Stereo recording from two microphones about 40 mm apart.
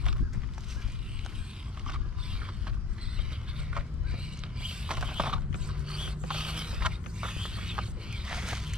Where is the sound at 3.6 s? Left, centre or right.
Right.